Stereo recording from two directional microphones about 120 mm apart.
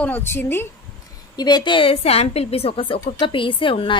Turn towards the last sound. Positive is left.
turn(degrees=45)  # may be behind; listen again after turning